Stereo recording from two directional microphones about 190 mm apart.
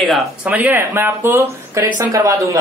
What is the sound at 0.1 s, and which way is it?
Speech, centre (ahead or behind).